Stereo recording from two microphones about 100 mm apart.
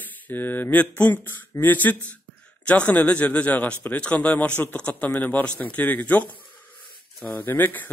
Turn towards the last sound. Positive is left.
turn(degrees=20)  # may be behind; listen again after turning